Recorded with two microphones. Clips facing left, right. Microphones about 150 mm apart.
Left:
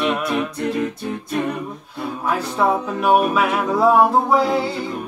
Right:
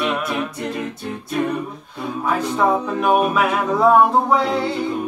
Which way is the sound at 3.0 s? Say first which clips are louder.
Left 1 dB; 5° left (ahead or behind).